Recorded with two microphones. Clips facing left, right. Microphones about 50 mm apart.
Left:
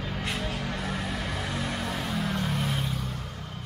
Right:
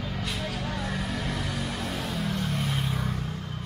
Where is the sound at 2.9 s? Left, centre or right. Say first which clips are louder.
Right 3 dB; right.